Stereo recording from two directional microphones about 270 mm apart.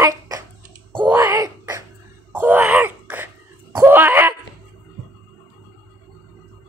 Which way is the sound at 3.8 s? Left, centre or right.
Centre.